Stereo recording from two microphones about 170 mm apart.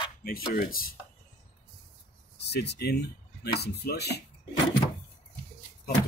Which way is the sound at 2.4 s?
75° left (ahead or behind).